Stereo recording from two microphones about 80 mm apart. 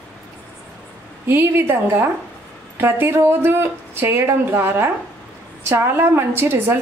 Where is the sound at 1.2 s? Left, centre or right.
Right.